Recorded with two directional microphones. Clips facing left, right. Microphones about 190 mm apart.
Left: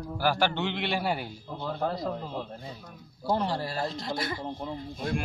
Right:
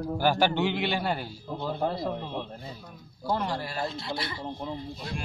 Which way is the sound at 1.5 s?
15° right (ahead or behind).